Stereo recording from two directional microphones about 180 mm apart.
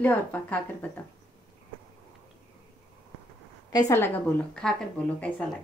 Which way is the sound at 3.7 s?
10° left (ahead or behind).